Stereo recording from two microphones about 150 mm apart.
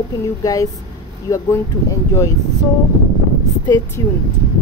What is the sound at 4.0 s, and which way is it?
Speech, 20° left (ahead or behind).